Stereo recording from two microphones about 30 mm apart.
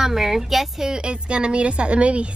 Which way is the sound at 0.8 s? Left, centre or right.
Right.